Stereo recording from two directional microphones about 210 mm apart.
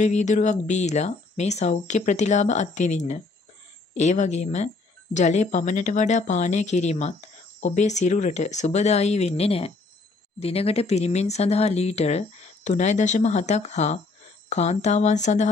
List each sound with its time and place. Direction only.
0.0 s speech: 35° left (ahead or behind)